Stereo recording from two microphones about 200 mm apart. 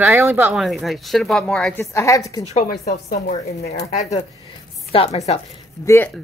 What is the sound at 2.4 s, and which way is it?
A woman's voice, 35° left (ahead or behind).